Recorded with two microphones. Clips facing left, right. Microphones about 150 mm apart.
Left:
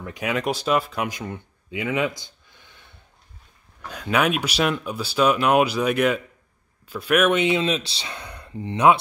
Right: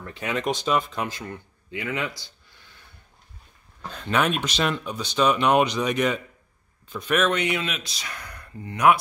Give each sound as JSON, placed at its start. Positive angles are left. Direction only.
{"t": 0.0, "sound": "speech", "side_deg": 10}
{"t": 3.9, "sound": "speech", "side_deg": 10}